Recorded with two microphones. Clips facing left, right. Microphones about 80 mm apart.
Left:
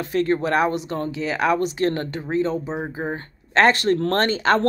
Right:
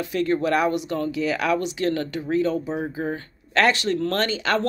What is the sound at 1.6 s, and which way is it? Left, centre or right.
Speech, left.